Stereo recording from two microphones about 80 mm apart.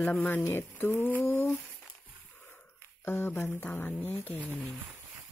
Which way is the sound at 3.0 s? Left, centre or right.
Left.